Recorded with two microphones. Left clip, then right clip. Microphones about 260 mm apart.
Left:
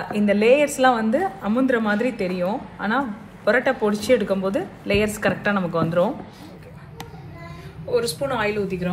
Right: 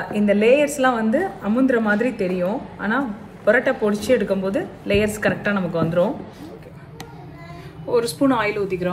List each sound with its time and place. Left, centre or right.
0.1 s a woman's voice: centre
7.9 s speech: right